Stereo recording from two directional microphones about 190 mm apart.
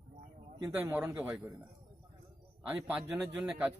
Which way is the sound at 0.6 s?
10° right (ahead or behind).